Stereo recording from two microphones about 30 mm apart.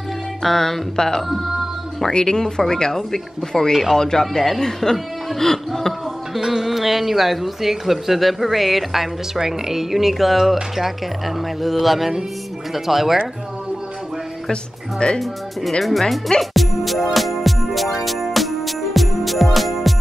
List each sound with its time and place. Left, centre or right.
0.4 s speech: centre
6.4 s speech: centre
14.5 s speech: left
15.8 s speech: centre
16.3 s music: centre